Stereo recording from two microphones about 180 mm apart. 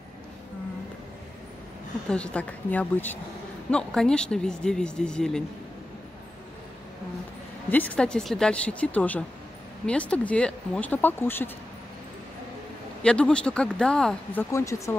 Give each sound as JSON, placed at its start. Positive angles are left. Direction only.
{"t": 2.0, "sound": "speech", "side_deg": 5}
{"t": 7.7, "sound": "speech", "side_deg": 10}
{"t": 13.0, "sound": "speech", "side_deg": 5}
{"t": 14.5, "sound": "speech", "side_deg": 15}